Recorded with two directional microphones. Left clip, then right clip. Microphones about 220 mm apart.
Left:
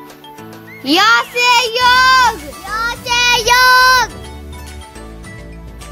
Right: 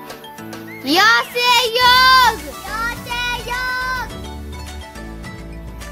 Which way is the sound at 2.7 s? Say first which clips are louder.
Left 7 dB; 40° left (ahead or behind).